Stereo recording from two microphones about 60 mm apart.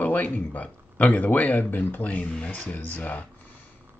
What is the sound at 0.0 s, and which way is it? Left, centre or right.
Speech, left.